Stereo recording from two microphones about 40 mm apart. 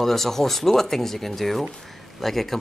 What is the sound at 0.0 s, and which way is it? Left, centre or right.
Speech, centre.